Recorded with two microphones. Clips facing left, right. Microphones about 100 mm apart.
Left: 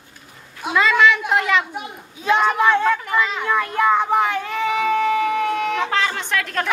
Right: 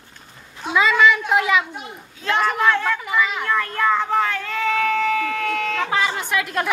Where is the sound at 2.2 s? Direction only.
15° left (ahead or behind).